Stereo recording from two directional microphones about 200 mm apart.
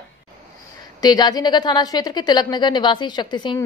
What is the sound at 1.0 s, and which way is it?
A woman's voice, 20° left (ahead or behind).